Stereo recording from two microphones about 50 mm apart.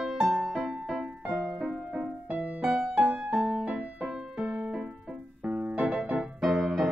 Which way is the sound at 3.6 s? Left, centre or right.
Centre.